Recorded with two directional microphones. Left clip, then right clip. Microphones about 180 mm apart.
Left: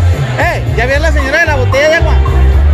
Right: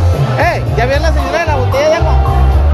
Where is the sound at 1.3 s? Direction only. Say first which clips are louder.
Left 4 dB; 50° left (ahead or behind).